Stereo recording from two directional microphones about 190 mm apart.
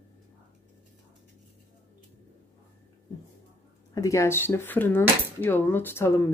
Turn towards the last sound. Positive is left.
turn(degrees=15)  # may be behind; listen again after turning